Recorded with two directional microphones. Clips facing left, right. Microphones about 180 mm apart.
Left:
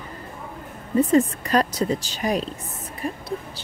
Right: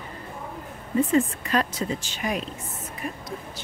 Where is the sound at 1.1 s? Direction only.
40° left (ahead or behind).